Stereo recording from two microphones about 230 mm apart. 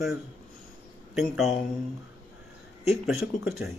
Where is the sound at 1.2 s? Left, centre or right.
Centre.